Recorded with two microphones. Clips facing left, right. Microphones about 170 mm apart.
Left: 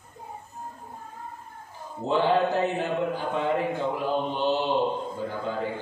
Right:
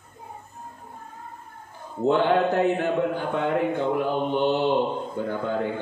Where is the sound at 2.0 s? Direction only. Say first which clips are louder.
Right 3 dB; 55° right (ahead or behind).